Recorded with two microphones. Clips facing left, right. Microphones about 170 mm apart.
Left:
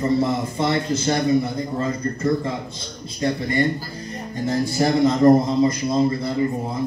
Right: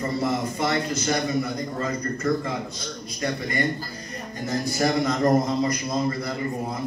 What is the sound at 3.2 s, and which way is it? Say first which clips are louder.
A man's voice: left 5 dB; 25° left (ahead or behind).